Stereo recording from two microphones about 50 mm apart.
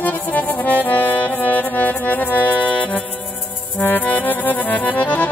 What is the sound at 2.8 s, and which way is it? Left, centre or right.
Music, centre.